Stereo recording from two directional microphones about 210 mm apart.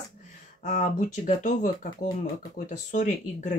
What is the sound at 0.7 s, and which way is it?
Speech, 35° left (ahead or behind).